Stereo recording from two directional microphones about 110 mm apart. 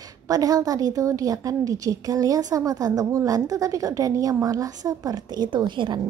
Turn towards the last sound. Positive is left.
turn(degrees=-45)  # may be behind; listen again after turning